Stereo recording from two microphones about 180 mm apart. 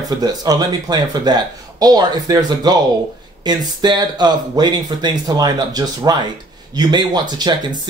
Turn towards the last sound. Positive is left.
turn(degrees=-25)  # may be behind; listen again after turning